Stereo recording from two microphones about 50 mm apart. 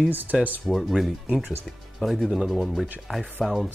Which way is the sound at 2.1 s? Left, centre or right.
Centre.